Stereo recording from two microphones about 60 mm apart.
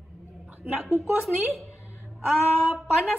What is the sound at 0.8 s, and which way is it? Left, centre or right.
Speech, centre.